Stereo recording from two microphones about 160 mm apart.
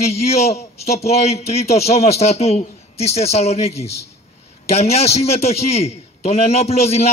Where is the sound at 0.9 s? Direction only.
40° left (ahead or behind).